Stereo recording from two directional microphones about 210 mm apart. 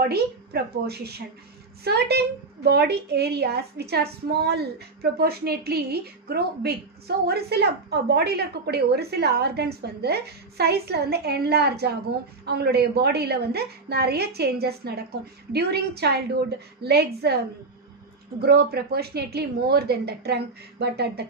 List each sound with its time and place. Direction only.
0.1 s a woman's voice: 50° right (ahead or behind)
18.4 s a woman's voice: 50° right (ahead or behind)